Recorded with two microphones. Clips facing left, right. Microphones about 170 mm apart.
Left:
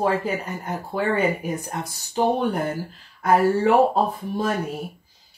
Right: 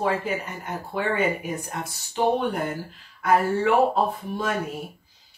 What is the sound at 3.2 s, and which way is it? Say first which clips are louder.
Speech: left 3 dB; 35° left (ahead or behind).